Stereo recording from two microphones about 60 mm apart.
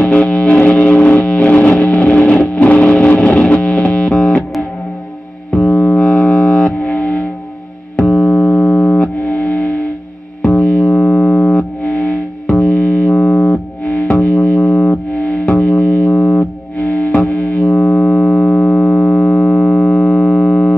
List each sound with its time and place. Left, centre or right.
0.0 s music: left